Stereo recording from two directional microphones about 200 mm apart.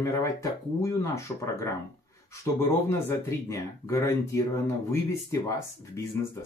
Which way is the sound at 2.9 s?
15° left (ahead or behind).